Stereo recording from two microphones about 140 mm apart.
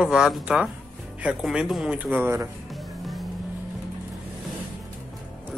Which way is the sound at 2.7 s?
Centre (ahead or behind).